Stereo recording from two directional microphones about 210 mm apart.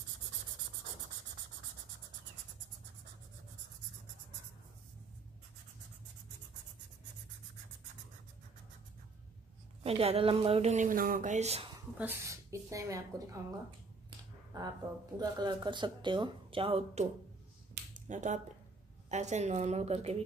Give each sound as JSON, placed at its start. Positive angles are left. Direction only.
{"t": 9.8, "sound": "speech", "side_deg": -30}
{"t": 11.7, "sound": "speech", "side_deg": -15}
{"t": 14.5, "sound": "a sound", "side_deg": -20}
{"t": 15.1, "sound": "a woman's voice", "side_deg": -20}